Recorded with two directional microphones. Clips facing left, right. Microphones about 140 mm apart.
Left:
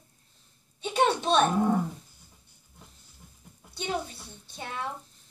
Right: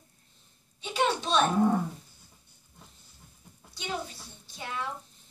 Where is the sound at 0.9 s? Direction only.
55° left (ahead or behind).